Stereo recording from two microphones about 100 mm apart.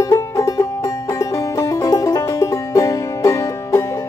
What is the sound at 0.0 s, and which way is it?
Music, 35° left (ahead or behind).